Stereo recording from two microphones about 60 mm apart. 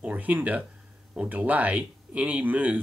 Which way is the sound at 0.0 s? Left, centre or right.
Right.